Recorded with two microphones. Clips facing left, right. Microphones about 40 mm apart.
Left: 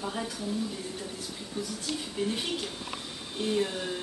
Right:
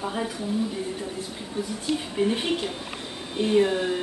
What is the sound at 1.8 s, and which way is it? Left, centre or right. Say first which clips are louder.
Speech: right 8 dB; right.